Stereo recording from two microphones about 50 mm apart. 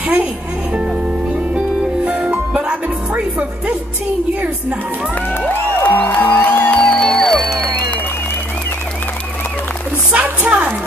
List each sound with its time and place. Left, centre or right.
0.0 s speech: right
2.0 s music: right
5.5 s music: left
6.8 s music: centre
10.1 s a sound: right